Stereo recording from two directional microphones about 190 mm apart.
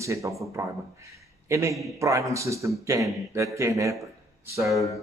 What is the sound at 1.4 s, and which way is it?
A man's voice, 15° right (ahead or behind).